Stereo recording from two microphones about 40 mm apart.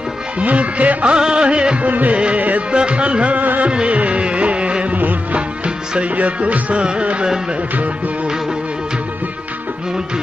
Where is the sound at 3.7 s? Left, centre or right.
Right.